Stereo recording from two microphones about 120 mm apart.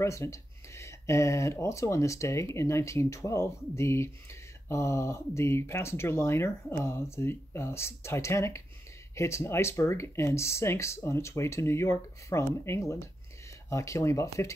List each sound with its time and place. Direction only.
0.0 s speech: 25° left (ahead or behind)